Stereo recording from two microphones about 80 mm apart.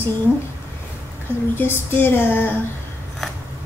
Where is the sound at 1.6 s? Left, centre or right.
Left.